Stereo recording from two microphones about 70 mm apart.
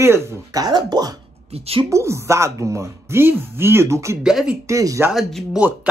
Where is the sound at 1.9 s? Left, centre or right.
Right.